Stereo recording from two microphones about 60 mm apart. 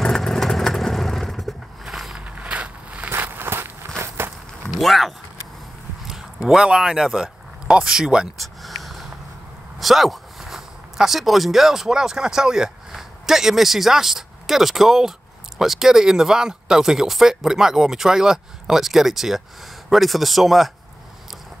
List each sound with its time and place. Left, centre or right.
0.0 s vehicle: centre
2.1 s walk: right
3.1 s walk: right
4.6 s a sound: centre
6.0 s speech: centre
8.4 s a sound: centre
9.8 s speech: centre